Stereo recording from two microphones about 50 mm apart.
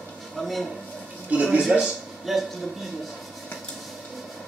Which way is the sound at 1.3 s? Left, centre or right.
Right.